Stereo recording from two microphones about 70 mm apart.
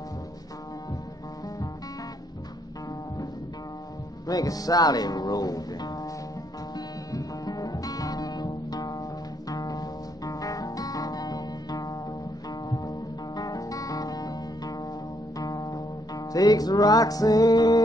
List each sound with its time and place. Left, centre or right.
4.3 s music: left
7.1 s music: left
9.5 s guitar: left
12.6 s music: left
13.4 s guitar: left
15.3 s music: left